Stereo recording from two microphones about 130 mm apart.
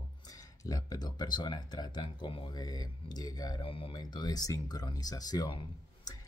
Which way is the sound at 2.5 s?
30° left (ahead or behind).